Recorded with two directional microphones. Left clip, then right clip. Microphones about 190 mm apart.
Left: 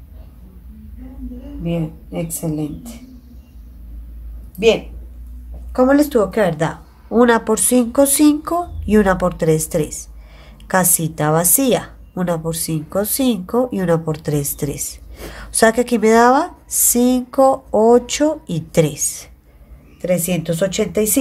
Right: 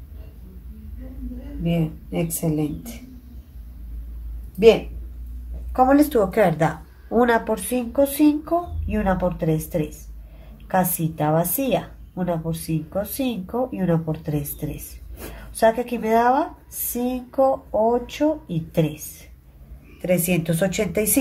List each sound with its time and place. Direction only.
1.6 s speech: centre (ahead or behind)
5.7 s a woman's voice: 20° left (ahead or behind)
7.5 s a woman's voice: 35° left (ahead or behind)
20.0 s a woman's voice: 15° left (ahead or behind)